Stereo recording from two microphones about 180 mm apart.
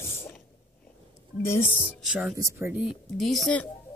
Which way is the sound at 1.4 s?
15° left (ahead or behind).